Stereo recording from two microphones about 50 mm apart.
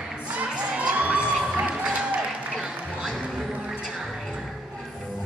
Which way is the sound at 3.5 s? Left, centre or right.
Right.